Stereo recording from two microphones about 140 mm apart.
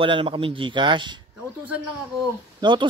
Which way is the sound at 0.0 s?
35° right (ahead or behind).